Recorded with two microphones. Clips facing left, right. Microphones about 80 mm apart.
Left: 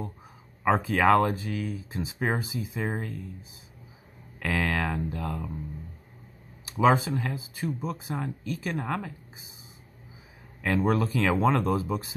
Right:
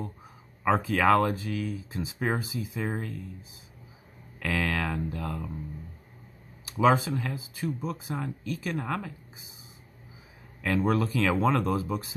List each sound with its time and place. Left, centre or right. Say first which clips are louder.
0.7 s speech: left 1 dB; centre
4.4 s speech: left 1 dB; left
6.8 s speech: left 1 dB; centre
10.6 s speech: left 1 dB; left